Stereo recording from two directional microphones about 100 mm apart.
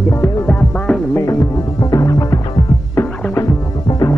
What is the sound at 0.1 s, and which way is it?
Music, 20° left (ahead or behind).